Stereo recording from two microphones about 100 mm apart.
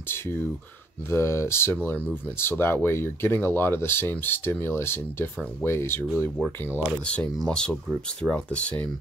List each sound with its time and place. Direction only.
1.1 s speech: 25° left (ahead or behind)
7.3 s speech: 10° left (ahead or behind)